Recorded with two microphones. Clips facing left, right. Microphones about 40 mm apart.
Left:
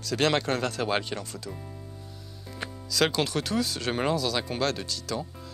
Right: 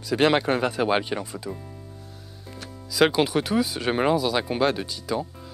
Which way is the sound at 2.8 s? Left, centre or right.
Centre.